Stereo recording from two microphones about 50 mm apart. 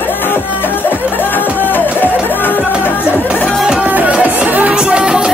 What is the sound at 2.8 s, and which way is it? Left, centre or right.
Chatter, left.